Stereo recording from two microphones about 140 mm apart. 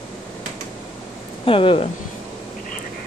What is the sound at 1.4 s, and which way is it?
Speech, 40° left (ahead or behind).